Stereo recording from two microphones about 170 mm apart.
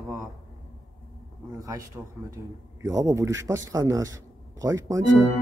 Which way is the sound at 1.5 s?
20° right (ahead or behind).